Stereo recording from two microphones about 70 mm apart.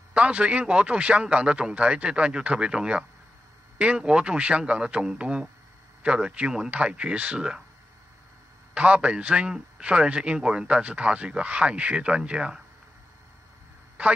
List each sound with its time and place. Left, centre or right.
0.1 s a man's voice: centre
8.7 s a man's voice: centre